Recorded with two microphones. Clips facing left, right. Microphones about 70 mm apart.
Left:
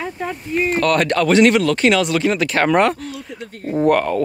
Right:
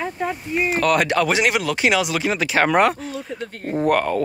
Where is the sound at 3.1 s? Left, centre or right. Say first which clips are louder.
Right 2 dB; right.